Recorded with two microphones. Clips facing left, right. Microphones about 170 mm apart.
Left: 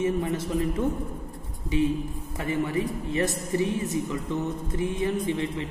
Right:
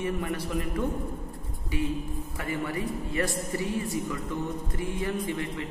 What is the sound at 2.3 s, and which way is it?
A man's voice, 20° left (ahead or behind).